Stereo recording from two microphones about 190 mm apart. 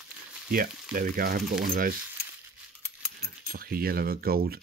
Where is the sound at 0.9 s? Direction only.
50° right (ahead or behind).